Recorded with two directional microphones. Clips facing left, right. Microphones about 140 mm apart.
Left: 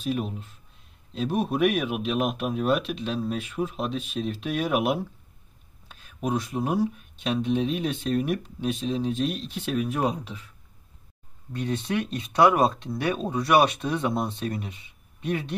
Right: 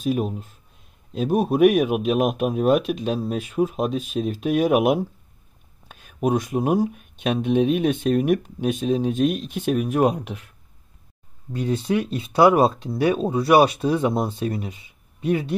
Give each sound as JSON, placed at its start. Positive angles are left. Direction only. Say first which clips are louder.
{"t": 0.0, "sound": "speech", "louder": "right 5 dB", "side_deg": -45}
{"t": 11.6, "sound": "speech", "louder": "right 5 dB", "side_deg": -35}